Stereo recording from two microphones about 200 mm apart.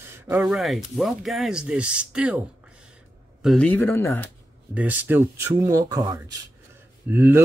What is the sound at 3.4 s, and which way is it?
Speech, 5° left (ahead or behind).